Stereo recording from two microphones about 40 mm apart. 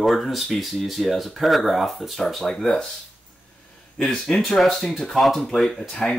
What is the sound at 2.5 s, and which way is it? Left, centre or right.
Speech, centre.